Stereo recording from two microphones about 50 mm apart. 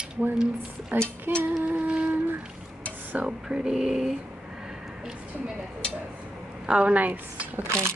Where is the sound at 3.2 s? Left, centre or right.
Centre.